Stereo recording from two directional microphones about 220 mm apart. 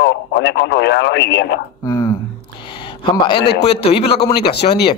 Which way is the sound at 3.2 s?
20° left (ahead or behind).